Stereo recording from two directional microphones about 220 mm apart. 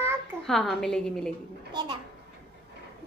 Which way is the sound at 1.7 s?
20° right (ahead or behind).